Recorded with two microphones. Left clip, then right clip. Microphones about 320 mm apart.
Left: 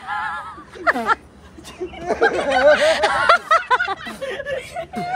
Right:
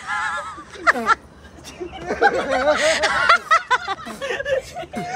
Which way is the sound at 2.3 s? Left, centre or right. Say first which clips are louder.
Left 4 dB; centre.